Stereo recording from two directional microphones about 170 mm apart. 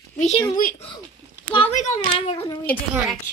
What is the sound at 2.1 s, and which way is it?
Speech, 35° left (ahead or behind).